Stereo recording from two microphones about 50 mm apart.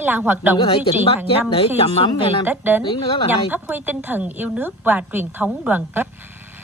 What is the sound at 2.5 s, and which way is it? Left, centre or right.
A woman's voice, right.